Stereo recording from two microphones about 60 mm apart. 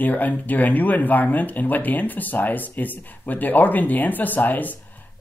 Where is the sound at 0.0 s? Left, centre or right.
Left.